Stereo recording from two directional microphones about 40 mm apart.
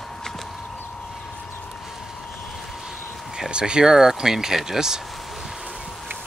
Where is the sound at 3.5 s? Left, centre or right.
Right.